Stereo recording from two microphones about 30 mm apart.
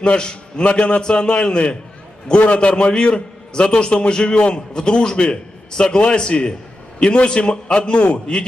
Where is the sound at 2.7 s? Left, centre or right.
Left.